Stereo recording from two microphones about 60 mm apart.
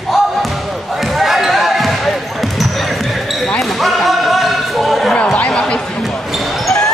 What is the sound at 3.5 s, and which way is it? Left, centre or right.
Basketball bounce, centre.